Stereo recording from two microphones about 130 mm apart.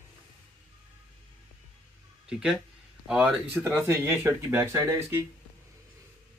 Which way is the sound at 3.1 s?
5° right (ahead or behind).